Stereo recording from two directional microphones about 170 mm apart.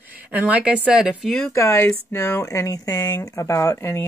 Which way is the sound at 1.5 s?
15° left (ahead or behind).